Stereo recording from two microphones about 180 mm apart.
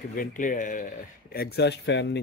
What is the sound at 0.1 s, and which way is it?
Speech, 50° left (ahead or behind).